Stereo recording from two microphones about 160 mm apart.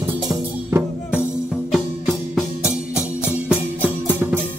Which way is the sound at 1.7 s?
Centre (ahead or behind).